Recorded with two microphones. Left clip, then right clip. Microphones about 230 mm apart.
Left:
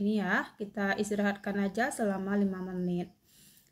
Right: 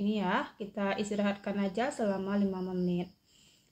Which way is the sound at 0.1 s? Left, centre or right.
Centre.